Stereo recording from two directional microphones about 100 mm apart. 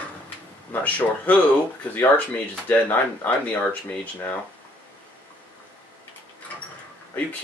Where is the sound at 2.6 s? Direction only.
20° left (ahead or behind).